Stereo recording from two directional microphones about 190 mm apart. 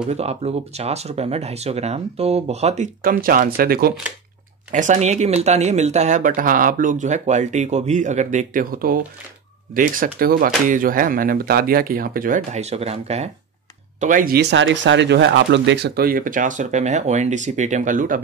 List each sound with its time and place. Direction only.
0.1 s speech: 35° right (ahead or behind); by 3.9 s 50° right (ahead or behind)
4.7 s speech: 40° right (ahead or behind)